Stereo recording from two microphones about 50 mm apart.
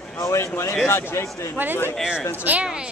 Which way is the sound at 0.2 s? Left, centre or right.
Left.